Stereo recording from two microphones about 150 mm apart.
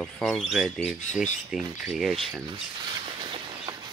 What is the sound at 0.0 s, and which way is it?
Speech, 5° left (ahead or behind).